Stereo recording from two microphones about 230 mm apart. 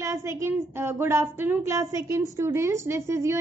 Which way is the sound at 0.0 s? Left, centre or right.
Centre.